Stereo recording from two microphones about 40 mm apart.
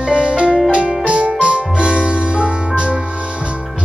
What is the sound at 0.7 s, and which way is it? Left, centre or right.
Keyboard, right.